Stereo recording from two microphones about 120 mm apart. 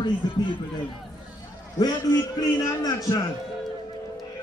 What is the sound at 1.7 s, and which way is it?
A man's voice, 30° left (ahead or behind).